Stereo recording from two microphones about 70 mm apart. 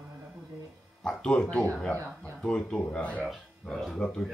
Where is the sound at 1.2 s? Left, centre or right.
Centre.